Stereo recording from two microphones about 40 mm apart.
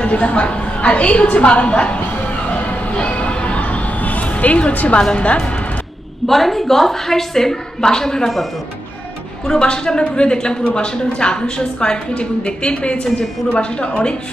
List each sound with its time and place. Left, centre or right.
0.0 s a woman's voice: left
2.5 s music: left
5.1 s a woman's voice: left
6.2 s a woman's voice: centre
9.5 s a woman's voice: centre